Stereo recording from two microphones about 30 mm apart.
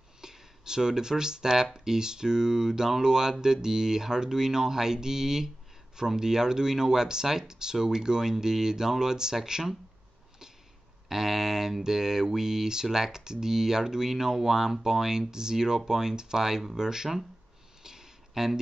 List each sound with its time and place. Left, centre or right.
0.2 s speech: centre
11.1 s speech: centre
17.8 s a sound: centre